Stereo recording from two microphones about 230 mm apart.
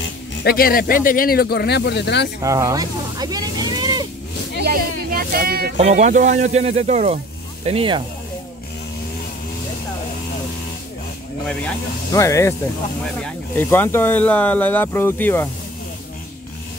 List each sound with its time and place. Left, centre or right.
0.0 s speech: left
2.4 s speech: centre
4.6 s speech: right
5.8 s speech: right
12.1 s speech: centre